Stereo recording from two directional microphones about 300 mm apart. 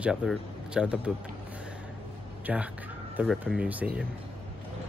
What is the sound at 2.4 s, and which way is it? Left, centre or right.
Speech, centre.